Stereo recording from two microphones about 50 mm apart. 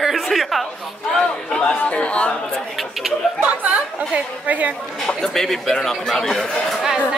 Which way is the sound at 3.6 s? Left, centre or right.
Right.